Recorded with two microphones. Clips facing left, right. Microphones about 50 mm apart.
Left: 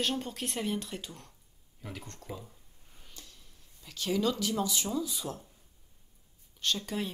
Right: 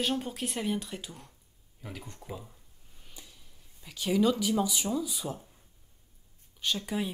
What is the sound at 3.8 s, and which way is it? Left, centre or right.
Speech, centre.